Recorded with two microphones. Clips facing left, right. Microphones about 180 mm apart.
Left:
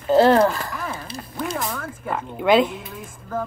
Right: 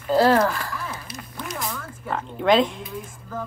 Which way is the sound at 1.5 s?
55° left (ahead or behind).